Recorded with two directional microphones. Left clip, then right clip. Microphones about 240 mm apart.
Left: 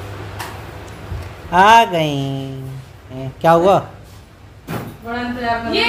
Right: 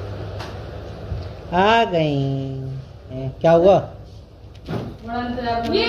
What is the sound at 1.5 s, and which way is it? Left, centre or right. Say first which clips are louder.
Speech: left 7 dB; left.